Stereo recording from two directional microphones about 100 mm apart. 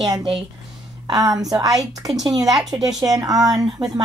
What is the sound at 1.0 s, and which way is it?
A woman's voice, 35° right (ahead or behind).